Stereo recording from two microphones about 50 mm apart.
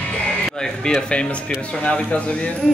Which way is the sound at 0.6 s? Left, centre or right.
Centre.